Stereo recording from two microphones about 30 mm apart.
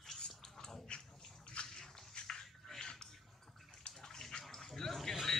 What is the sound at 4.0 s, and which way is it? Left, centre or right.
Bathtub, centre.